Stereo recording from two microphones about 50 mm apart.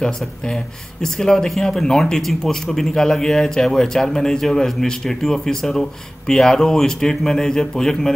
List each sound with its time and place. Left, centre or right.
1.0 s speech: centre